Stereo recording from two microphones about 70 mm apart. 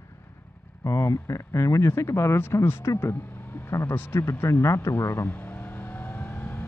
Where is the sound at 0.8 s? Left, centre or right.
Left.